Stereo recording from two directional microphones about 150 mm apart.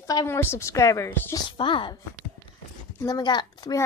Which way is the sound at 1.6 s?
35° left (ahead or behind).